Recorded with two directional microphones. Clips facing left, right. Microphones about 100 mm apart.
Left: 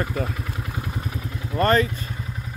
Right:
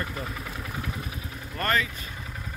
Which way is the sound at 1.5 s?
35° left (ahead or behind).